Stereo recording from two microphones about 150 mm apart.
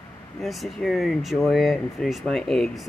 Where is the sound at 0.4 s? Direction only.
Centre (ahead or behind).